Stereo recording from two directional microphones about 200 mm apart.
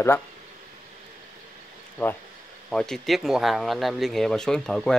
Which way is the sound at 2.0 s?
10° left (ahead or behind).